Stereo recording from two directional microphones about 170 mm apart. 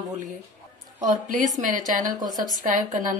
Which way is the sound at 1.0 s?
50° right (ahead or behind).